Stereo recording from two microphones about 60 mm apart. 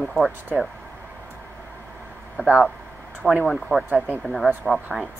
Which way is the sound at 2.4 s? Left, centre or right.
Right.